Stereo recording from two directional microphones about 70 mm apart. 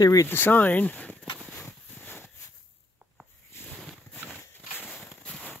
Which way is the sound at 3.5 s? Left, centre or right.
Left.